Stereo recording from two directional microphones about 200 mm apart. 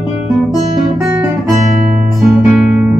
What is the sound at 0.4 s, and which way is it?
Guitar, centre (ahead or behind).